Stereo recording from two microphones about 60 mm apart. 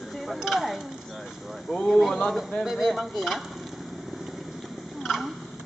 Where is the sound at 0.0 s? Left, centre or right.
Centre.